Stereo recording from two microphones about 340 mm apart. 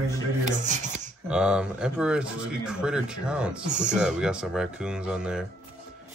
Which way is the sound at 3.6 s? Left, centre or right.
Right.